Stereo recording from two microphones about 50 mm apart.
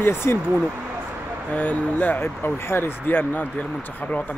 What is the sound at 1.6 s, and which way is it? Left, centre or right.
Speech, left.